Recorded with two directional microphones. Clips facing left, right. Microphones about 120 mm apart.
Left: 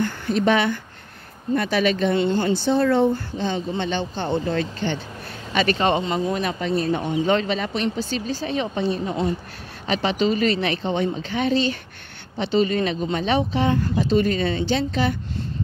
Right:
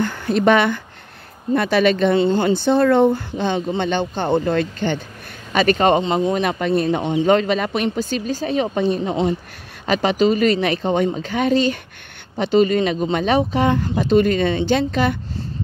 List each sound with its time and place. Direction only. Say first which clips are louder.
0.0 s speech: right 4 dB; 65° right (ahead or behind)
1.5 s speech: right 4 dB; 85° right
2.1 s speech: right 4 dB; 35° right (ahead or behind)
2.4 s speech: right 4 dB; 60° right (ahead or behind)
5.5 s speech: right 5 dB; 45° right (ahead or behind)
5.9 s speech: right 5 dB; 30° right (ahead or behind)
6.3 s speech: right 4 dB; 55° right (ahead or behind)
7.0 s speech: right 3 dB; 25° right (ahead or behind)
7.2 s speech: right 6 dB; 45° right (ahead or behind)
9.0 s speech: right 4 dB; 25° right (ahead or behind)
9.8 s speech: right 5 dB; 45° right (ahead or behind)
14.3 s speech: right 4 dB; 35° left (ahead or behind)
14.7 s speech: right 4 dB; 55° right (ahead or behind)